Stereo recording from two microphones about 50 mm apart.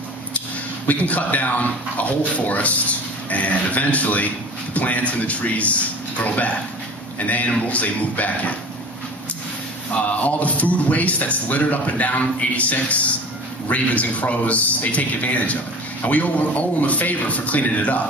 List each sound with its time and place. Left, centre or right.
0.8 s speech: left
10.0 s speech: left